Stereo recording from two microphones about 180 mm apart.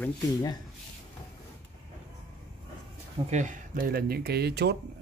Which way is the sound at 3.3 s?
40° right (ahead or behind).